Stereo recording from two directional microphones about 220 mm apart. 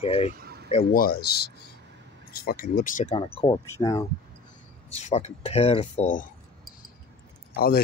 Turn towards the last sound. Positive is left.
turn(degrees=45)  # may be behind; listen again after turning